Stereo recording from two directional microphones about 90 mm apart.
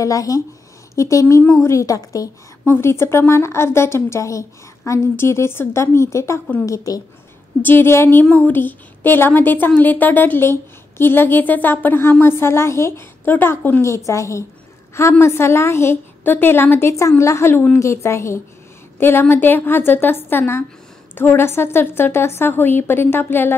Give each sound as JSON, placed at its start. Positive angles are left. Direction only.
{"t": 0.0, "sound": "a woman's voice", "side_deg": 40}
{"t": 2.7, "sound": "a woman's voice", "side_deg": 30}
{"t": 7.6, "sound": "a woman's voice", "side_deg": 25}
{"t": 13.8, "sound": "a woman's voice", "side_deg": 35}